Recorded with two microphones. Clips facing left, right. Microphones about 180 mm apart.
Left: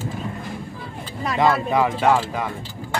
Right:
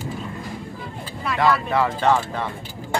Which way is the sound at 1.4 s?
20° left (ahead or behind).